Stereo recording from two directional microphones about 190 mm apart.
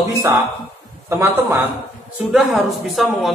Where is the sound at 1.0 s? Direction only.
15° right (ahead or behind).